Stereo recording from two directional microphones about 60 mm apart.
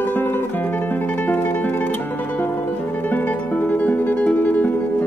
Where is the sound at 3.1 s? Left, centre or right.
Left.